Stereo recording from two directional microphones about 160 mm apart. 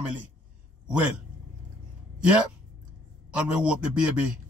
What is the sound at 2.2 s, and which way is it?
A man's voice, 5° right (ahead or behind).